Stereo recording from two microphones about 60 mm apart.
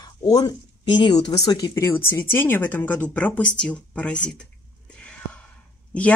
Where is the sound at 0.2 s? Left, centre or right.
Left.